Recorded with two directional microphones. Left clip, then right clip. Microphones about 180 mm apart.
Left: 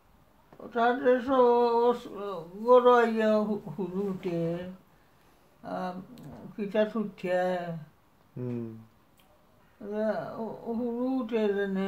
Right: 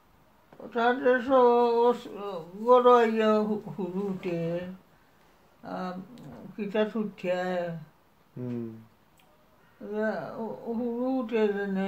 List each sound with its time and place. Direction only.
0.7 s speech: 10° left (ahead or behind)
9.9 s speech: 15° left (ahead or behind)